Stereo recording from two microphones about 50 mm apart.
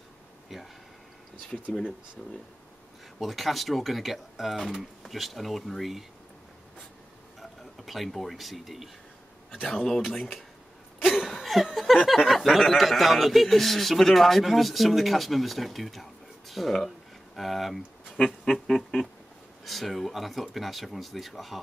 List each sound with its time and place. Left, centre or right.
1.5 s speech: left
3.2 s speech: centre
7.3 s speech: centre
9.7 s speech: centre
11.1 s laughter: centre
12.1 s speech: centre
18.1 s a sound: centre
19.6 s speech: centre